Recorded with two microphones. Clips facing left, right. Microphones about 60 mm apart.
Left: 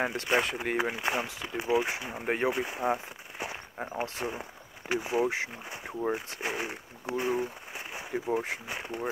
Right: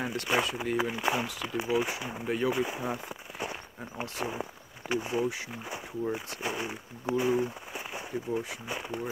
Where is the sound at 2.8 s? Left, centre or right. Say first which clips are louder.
Left 4 dB; left.